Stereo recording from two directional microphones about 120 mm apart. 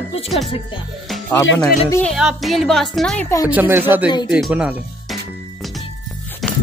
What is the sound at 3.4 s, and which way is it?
Speech, 15° right (ahead or behind).